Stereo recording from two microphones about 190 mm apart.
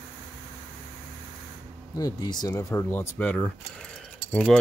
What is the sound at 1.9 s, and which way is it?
Speech, 20° left (ahead or behind).